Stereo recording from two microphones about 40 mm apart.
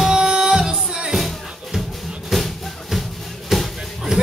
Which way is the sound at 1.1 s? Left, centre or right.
Centre.